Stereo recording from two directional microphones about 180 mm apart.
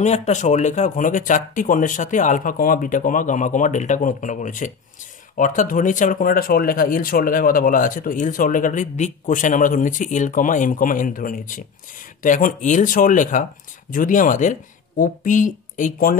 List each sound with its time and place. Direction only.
0.0 s speech: 40° left (ahead or behind)